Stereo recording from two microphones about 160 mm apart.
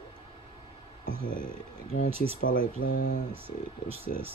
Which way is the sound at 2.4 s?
60° left (ahead or behind).